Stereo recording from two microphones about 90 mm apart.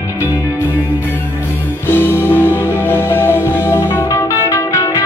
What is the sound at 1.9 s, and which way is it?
Music, 25° left (ahead or behind).